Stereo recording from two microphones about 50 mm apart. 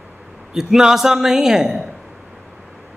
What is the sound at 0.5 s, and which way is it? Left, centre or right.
Speech, centre.